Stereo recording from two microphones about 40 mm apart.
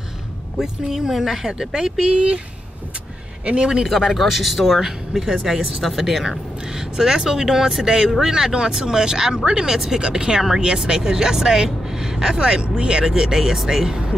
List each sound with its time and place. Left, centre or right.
0.6 s speech: centre; by 2.4 s right
3.4 s speech: right
3.9 s speech: centre
5.9 s speech: centre